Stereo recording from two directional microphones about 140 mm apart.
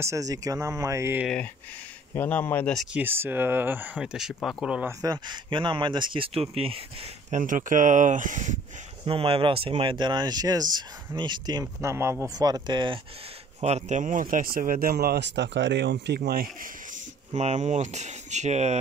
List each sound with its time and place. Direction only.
0.0 s speech: 25° right (ahead or behind)
1.2 s speech: 5° left (ahead or behind)
2.7 s speech: centre (ahead or behind)
3.0 s speech: 15° right (ahead or behind)
4.8 s speech: 25° right (ahead or behind); by 6.8 s 45° right (ahead or behind)
7.2 s speech: 65° right (ahead or behind)
9.0 s speech: 45° right (ahead or behind)
11.6 s speech: 20° right (ahead or behind); by 13.0 s 35° right (ahead or behind)
13.6 s speech: 50° right (ahead or behind); by 15.1 s 90° right
16.2 s speech: 90° right
17.3 s speech: 55° right (ahead or behind)